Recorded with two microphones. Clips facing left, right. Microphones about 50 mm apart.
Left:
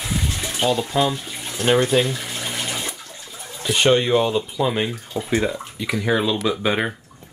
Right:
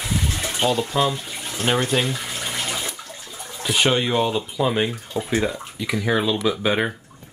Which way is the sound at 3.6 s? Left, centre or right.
Centre.